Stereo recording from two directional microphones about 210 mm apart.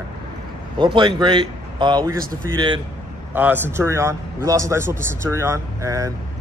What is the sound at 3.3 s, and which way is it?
A man's voice, 10° right (ahead or behind).